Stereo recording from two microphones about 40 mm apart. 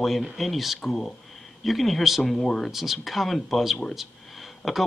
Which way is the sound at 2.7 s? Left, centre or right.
Centre.